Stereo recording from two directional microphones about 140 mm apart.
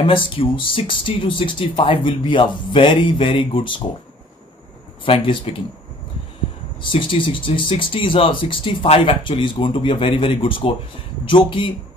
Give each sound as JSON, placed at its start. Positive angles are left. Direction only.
{"t": 0.0, "sound": "speech", "side_deg": 35}
{"t": 5.0, "sound": "speech", "side_deg": 40}
{"t": 6.8, "sound": "speech", "side_deg": 40}